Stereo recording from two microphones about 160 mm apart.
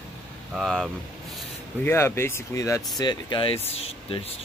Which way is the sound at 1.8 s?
15° left (ahead or behind).